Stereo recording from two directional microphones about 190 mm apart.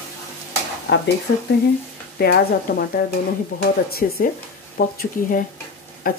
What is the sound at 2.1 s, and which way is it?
Speech, 55° left (ahead or behind).